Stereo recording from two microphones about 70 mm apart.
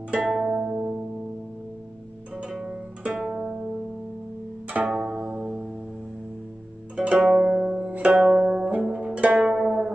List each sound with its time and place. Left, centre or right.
0.1 s music: centre
2.5 s music: centre
4.6 s pizzicato: centre
7.0 s music: centre
7.9 s music: centre
8.8 s zither: centre